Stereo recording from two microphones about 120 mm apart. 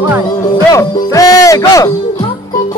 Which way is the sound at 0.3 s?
30° left (ahead or behind).